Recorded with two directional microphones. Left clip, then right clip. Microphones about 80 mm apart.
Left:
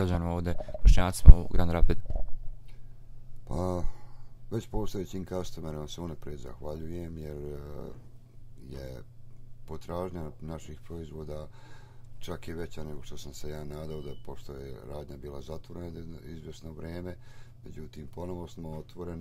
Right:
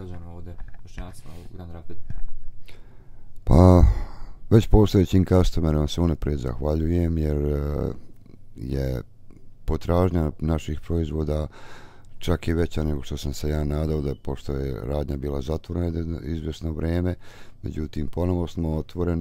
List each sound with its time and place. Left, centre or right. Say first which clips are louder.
0.0 s speech: left 11 dB; left
3.4 s speech: right 16 dB; right